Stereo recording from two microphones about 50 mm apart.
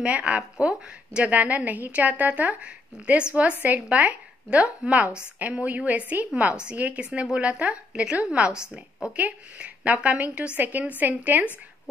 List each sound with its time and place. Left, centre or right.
0.0 s a woman's voice: right
9.1 s a woman's voice: right